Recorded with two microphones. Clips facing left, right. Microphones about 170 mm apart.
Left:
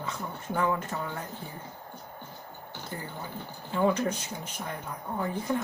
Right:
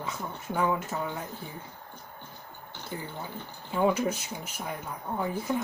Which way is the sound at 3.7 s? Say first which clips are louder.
Even; 10° right (ahead or behind).